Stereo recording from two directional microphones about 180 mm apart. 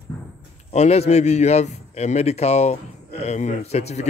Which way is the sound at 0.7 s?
35° left (ahead or behind).